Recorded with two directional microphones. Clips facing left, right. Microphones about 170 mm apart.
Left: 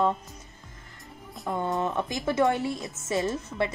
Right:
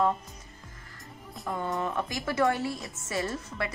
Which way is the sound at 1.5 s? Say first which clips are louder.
Left 3 dB; 25° left (ahead or behind).